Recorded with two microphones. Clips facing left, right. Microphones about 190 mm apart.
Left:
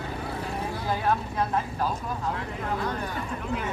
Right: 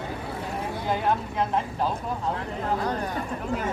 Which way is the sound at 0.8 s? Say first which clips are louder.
Right 1 dB; 20° right (ahead or behind).